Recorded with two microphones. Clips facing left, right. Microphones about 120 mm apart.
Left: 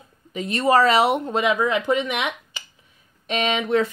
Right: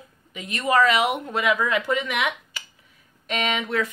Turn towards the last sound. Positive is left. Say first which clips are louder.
# left 4 dB
turn(degrees=25)  # may be behind; listen again after turning